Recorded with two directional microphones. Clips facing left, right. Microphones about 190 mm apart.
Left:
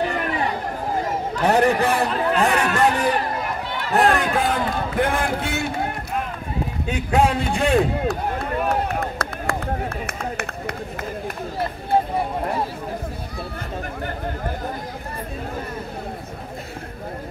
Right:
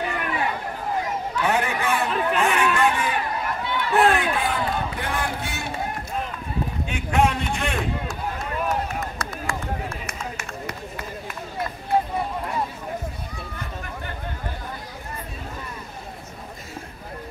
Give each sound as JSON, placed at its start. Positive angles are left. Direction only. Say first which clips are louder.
{"t": 0.1, "sound": "chatter", "louder": "left 3 dB", "side_deg": 35}
{"t": 0.9, "sound": "a sound", "louder": "left 1 dB", "side_deg": 40}
{"t": 3.9, "sound": "speech", "louder": "left 2 dB", "side_deg": 40}
{"t": 6.9, "sound": "a man's voice", "louder": "left 3 dB", "side_deg": 30}
{"t": 8.6, "sound": "run", "louder": "left 3 dB", "side_deg": 55}